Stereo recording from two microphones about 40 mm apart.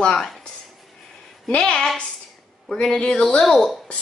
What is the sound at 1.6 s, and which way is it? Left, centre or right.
A woman's voice, centre.